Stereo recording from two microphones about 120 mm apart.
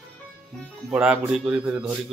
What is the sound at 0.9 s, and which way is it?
Speech, 10° right (ahead or behind).